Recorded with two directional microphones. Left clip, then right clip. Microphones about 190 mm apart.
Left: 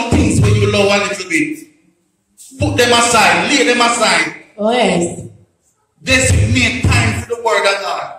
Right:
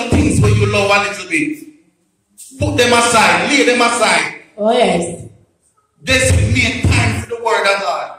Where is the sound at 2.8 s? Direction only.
40° left (ahead or behind).